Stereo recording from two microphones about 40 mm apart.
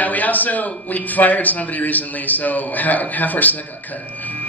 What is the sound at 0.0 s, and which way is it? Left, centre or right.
Speech, left.